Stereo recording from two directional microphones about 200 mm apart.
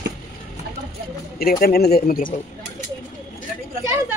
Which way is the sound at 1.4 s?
50° left (ahead or behind).